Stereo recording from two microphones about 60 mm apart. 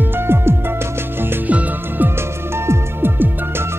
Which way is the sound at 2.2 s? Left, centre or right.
Right.